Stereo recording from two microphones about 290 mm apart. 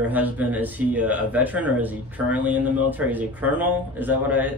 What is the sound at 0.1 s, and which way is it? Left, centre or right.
Speech, centre.